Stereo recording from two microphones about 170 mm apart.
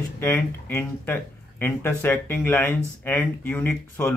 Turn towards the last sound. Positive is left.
turn(degrees=15)  # may be behind; listen again after turning